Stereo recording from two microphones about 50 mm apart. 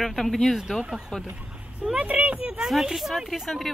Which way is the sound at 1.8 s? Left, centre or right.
Right.